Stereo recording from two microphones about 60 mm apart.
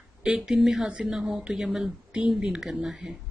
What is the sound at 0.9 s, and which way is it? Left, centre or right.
Speech, centre.